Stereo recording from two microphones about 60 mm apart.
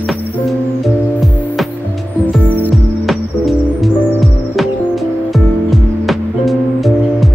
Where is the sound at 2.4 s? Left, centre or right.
Left.